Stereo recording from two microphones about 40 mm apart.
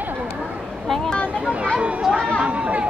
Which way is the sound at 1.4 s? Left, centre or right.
Right.